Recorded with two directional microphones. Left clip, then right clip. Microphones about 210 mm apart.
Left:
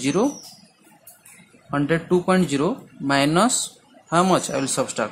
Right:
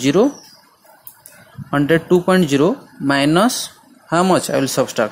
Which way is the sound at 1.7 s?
25° right (ahead or behind).